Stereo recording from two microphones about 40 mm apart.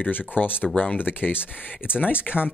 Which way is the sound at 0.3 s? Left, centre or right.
Left.